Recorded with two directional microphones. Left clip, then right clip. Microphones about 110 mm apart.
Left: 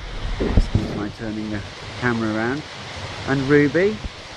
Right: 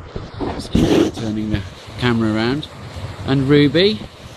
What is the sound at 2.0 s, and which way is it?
Speech, 30° right (ahead or behind).